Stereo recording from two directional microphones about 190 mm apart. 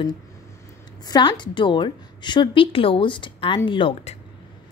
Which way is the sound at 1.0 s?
25° left (ahead or behind).